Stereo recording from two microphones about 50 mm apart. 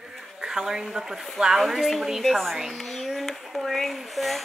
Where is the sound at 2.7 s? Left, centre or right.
Centre.